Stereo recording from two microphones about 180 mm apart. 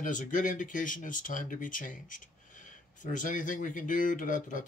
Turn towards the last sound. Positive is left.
turn(degrees=45)  # may be behind; listen again after turning